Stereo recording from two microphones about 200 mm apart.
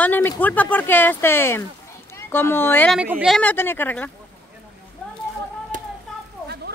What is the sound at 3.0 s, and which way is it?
Speech, 5° right (ahead or behind).